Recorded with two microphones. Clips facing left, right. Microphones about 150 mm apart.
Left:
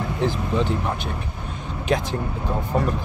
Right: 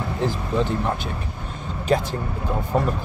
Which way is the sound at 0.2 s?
Centre (ahead or behind).